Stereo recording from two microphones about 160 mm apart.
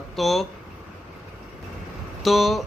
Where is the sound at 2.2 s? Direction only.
Centre (ahead or behind).